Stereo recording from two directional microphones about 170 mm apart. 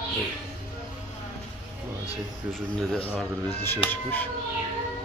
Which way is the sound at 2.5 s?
5° left (ahead or behind).